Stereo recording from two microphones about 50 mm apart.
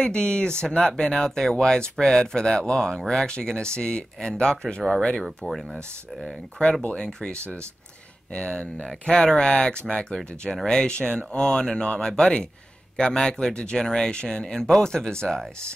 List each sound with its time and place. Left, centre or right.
0.0 s speech: centre
5.2 s speech: centre
6.6 s speech: left
7.3 s speech: right
8.3 s speech: centre